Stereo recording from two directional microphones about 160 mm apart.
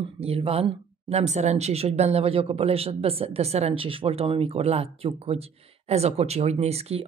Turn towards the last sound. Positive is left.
turn(degrees=-40)  # may be behind; listen again after turning